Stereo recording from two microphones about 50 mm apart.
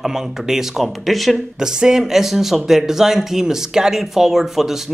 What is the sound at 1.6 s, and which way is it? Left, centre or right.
A man's voice, centre.